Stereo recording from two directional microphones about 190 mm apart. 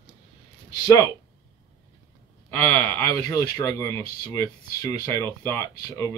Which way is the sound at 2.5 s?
15° left (ahead or behind).